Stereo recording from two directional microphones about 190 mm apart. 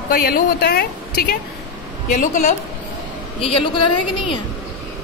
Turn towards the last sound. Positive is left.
turn(degrees=25)  # may be behind; listen again after turning